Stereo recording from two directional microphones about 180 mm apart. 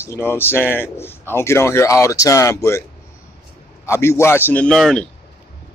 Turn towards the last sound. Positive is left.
turn(degrees=5)  # may be behind; listen again after turning